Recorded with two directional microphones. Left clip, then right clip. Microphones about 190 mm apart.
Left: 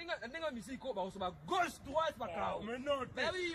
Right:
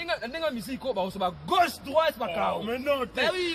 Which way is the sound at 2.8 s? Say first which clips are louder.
Right 10 dB; 15° right (ahead or behind).